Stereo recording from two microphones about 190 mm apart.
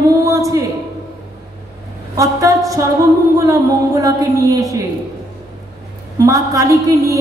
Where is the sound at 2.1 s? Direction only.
15° right (ahead or behind).